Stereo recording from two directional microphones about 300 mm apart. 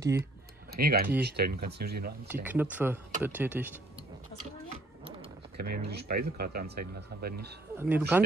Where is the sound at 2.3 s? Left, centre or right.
Centre.